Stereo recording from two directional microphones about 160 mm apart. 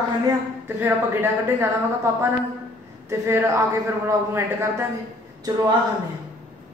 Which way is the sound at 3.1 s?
15° right (ahead or behind).